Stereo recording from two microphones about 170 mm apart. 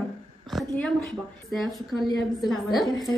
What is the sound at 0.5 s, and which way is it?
A woman's voice, 5° left (ahead or behind).